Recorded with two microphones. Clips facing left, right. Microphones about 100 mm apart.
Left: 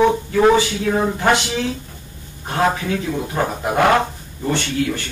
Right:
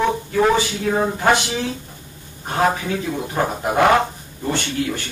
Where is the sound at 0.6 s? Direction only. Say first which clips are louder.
Left 1 dB; 5° right (ahead or behind).